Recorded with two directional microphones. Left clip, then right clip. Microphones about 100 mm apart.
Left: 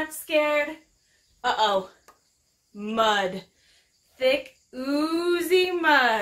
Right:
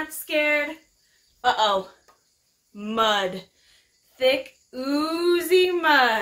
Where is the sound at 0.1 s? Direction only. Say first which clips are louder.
Right 1 dB; 20° right (ahead or behind).